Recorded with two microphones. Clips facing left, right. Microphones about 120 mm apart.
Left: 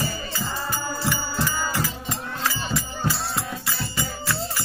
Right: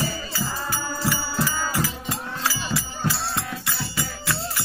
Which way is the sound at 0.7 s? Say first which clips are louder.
Even; 5° right (ahead or behind).